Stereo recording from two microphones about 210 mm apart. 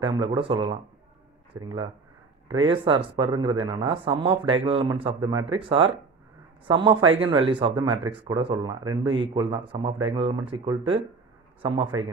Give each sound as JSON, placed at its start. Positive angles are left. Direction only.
{"t": 0.0, "sound": "speech", "side_deg": -20}